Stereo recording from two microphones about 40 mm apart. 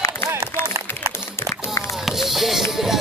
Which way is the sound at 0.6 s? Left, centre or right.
Left.